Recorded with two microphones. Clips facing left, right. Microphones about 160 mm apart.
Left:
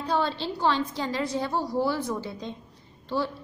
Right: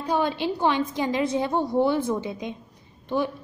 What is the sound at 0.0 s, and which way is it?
A woman's voice, 15° right (ahead or behind).